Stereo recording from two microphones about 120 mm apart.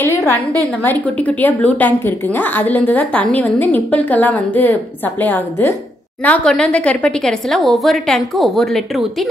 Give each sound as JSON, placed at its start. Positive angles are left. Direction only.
{"t": 0.8, "sound": "a woman's voice", "side_deg": 10}